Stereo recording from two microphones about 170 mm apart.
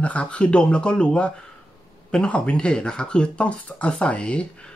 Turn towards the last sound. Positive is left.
turn(degrees=5)  # may be behind; listen again after turning